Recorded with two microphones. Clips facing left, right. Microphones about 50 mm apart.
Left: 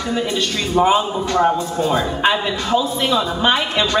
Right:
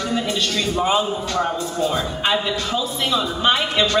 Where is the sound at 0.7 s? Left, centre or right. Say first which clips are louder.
Left 7 dB; left.